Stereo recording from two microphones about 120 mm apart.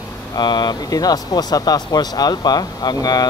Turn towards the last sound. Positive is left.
turn(degrees=35)  # may be behind; listen again after turning